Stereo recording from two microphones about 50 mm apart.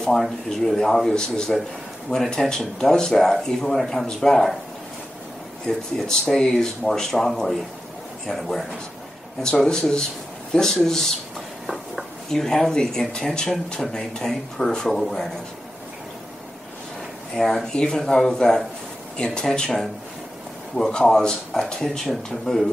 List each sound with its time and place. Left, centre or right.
0.5 s speech: centre
5.7 s a man's voice: centre
9.4 s speech: centre
11.6 s a sound: centre
12.3 s speech: centre
17.4 s speech: centre